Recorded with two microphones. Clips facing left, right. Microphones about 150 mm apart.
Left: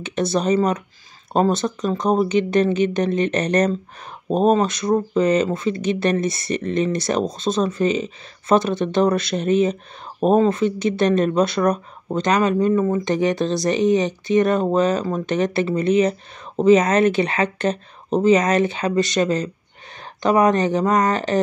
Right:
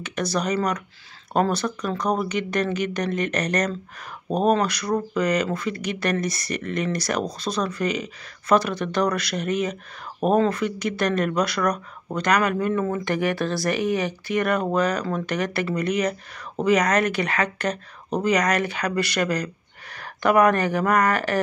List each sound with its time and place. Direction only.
0.0 s speech: 25° left (ahead or behind)